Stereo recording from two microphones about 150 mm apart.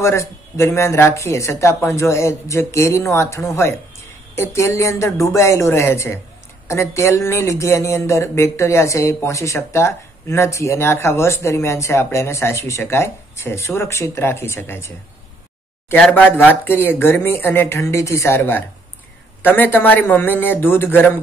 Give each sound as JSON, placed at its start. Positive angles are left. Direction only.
{"t": 0.0, "sound": "speech", "side_deg": 20}